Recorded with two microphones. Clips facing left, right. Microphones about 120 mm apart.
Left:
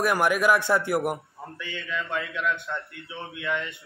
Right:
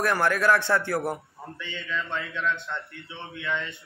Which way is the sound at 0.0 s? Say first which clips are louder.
Left 1 dB; 10° left (ahead or behind).